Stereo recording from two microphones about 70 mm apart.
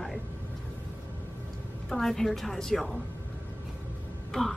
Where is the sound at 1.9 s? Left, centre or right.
Centre.